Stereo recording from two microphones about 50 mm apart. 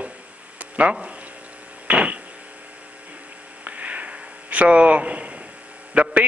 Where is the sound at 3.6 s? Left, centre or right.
Right.